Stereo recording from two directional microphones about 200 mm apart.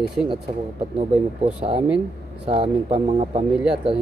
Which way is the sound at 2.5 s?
30° right (ahead or behind).